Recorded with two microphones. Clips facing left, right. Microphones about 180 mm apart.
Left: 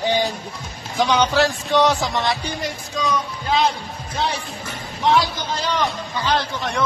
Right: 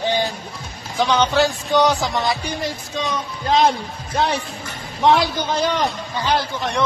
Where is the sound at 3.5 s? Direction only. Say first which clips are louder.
Right 3 dB; 45° right (ahead or behind).